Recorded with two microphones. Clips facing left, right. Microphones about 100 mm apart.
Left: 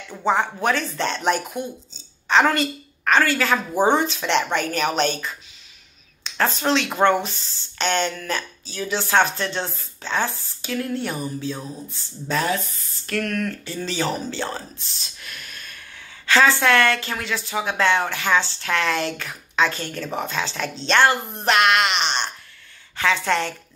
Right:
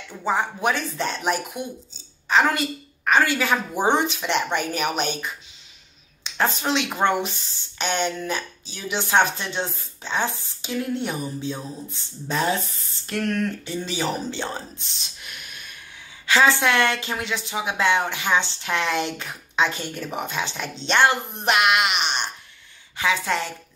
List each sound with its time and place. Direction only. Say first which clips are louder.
0.2 s speech: left 2 dB; 5° right (ahead or behind)
6.3 s speech: left 2 dB; 15° right (ahead or behind)
13.8 s speech: left 2 dB; 15° right (ahead or behind)
15.2 s a sound: left 2 dB; 15° right (ahead or behind)
16.3 s a woman's voice: left 2 dB; 15° right (ahead or behind)